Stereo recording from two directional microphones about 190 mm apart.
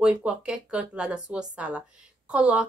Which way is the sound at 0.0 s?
5° right (ahead or behind).